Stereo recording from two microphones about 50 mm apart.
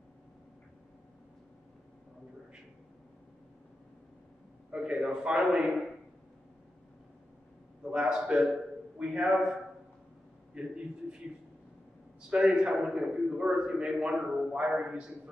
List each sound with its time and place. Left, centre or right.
4.7 s a man's voice: centre
7.8 s a man's voice: centre
12.2 s a sound: right
12.5 s a man's voice: centre